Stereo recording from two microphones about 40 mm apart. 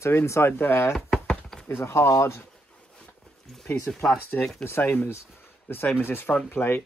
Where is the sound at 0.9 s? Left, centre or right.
Centre.